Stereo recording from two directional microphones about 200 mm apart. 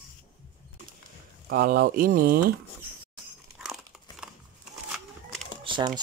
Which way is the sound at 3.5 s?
5° right (ahead or behind).